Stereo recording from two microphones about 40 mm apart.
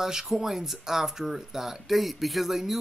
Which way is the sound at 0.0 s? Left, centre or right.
Centre.